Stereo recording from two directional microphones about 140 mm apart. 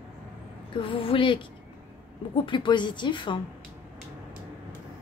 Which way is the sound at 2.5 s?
35° left (ahead or behind).